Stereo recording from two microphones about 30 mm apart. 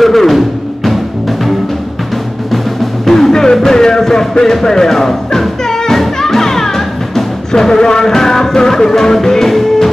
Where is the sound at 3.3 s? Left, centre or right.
Left.